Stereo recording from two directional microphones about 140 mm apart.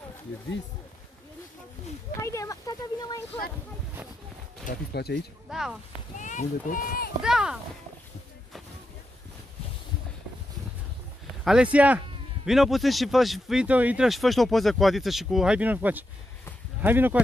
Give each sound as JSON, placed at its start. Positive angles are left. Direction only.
{"t": 2.1, "sound": "speech", "side_deg": 20}
{"t": 4.7, "sound": "speech", "side_deg": 70}
{"t": 5.5, "sound": "a man's voice", "side_deg": -5}
{"t": 6.1, "sound": "speech", "side_deg": 65}
{"t": 7.2, "sound": "a man's voice", "side_deg": -5}
{"t": 11.4, "sound": "a man's voice", "side_deg": -5}